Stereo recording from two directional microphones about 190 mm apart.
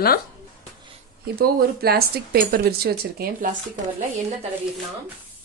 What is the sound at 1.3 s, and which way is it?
Speech, 55° right (ahead or behind).